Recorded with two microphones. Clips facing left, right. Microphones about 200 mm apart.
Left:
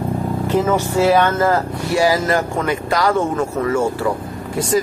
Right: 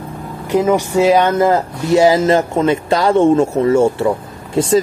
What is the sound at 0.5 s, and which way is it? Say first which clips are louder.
Speech: right 4 dB; 15° right (ahead or behind).